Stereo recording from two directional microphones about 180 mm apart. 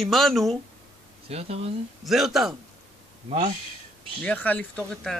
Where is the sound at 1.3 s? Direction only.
35° right (ahead or behind).